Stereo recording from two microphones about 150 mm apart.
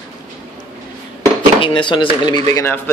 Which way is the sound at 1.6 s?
35° left (ahead or behind).